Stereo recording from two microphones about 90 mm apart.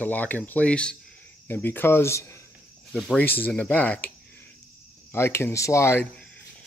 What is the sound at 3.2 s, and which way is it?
Speech, 20° left (ahead or behind).